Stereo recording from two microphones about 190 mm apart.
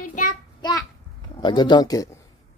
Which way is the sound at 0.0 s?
45° left (ahead or behind).